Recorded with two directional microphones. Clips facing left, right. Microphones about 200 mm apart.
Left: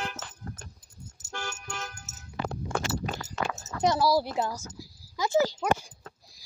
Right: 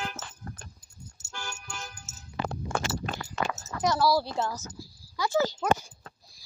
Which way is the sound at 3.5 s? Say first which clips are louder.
Left 3 dB; 15° left (ahead or behind).